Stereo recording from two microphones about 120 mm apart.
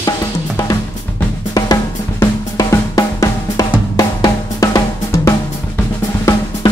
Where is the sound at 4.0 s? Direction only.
30° left (ahead or behind).